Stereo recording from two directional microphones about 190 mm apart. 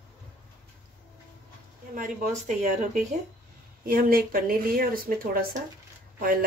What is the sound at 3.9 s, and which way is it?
Speech, 50° right (ahead or behind).